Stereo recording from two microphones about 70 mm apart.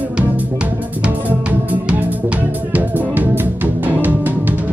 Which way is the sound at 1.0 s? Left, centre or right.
Right.